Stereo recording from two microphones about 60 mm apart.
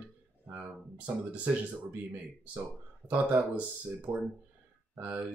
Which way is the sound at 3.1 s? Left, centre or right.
Right.